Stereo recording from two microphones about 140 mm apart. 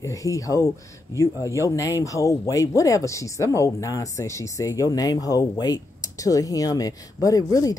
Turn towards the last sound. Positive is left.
turn(degrees=25)  # may be behind; listen again after turning